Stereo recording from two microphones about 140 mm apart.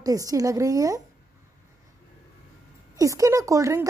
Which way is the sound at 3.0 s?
25° right (ahead or behind).